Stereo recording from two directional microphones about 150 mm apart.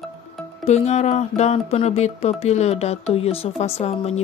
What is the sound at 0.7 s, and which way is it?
Speech, 50° left (ahead or behind).